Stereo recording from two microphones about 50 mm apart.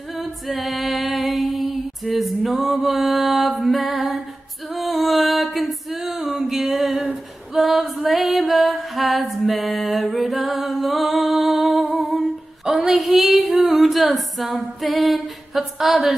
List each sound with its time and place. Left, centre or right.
0.1 s female singing: centre
4.7 s music: centre
12.2 s a sound: centre